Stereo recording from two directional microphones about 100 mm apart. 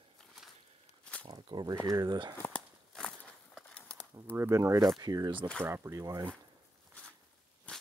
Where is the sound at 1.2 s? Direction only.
45° right (ahead or behind).